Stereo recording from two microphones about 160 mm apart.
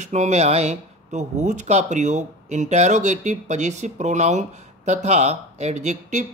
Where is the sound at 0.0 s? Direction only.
50° right (ahead or behind).